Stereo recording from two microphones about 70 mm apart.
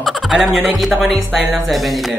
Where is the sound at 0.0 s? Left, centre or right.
Centre.